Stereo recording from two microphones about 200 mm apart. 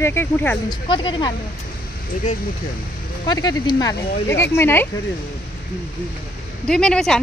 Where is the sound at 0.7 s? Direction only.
25° left (ahead or behind).